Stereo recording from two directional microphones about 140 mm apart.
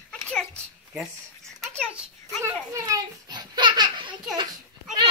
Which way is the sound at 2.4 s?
25° right (ahead or behind).